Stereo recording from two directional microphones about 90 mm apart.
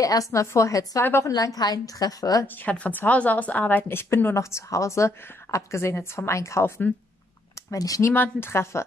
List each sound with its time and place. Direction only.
0.0 s a woman's voice: 40° left (ahead or behind)
1.3 s a woman's voice: 45° left (ahead or behind)
2.4 s a woman's voice: 20° left (ahead or behind)
7.7 s a woman's voice: 40° left (ahead or behind)
8.1 s a woman's voice: 25° left (ahead or behind)